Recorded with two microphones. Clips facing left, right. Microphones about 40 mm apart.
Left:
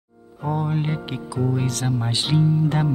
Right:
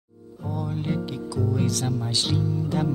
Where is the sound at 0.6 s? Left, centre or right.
Left.